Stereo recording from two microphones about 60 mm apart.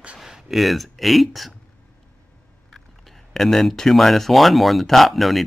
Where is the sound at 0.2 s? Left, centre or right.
Centre.